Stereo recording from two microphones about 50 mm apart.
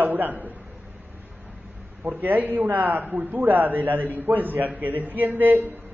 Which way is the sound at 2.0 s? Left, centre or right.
Right.